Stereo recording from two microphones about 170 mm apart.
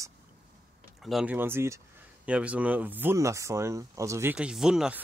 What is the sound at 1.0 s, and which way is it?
Speech, 5° right (ahead or behind).